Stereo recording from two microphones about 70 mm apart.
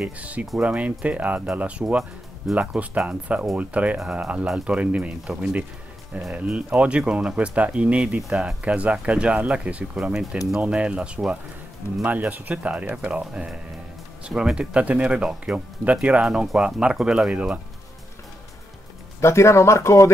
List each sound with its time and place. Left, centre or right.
0.2 s speech: right
12.0 s speech: right
19.2 s speech: left